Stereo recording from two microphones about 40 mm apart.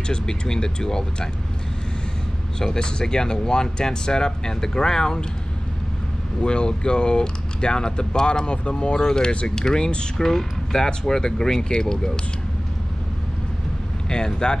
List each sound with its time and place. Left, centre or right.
0.1 s speech: centre
2.6 s speech: centre
6.4 s speech: left
10.1 s speech: centre
14.0 s speech: centre